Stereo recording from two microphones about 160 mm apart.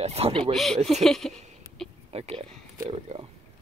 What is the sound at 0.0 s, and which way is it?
Speech, 40° right (ahead or behind).